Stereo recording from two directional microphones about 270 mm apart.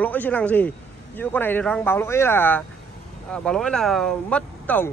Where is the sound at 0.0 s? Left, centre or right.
Centre.